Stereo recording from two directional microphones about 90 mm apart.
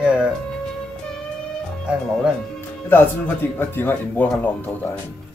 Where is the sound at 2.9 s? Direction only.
25° left (ahead or behind).